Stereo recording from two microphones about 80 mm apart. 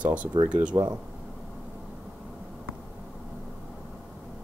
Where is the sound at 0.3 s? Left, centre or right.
Right.